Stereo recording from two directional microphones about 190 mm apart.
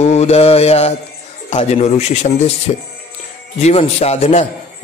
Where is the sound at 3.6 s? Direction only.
35° left (ahead or behind).